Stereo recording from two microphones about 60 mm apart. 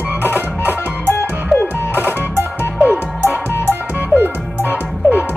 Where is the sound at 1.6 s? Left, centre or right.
Left.